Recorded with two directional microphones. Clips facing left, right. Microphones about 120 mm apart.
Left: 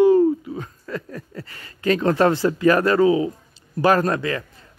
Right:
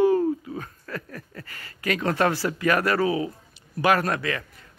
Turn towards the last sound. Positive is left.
turn(degrees=30)  # may be behind; listen again after turning